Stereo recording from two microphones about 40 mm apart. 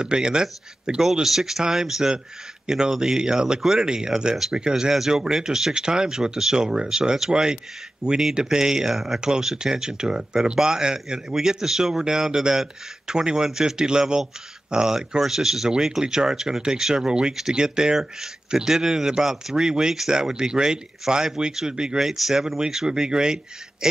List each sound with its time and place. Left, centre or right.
0.0 s speech: right
4.9 s speech: centre
9.2 s speech: centre
22.0 s speech: centre
23.8 s a sound: centre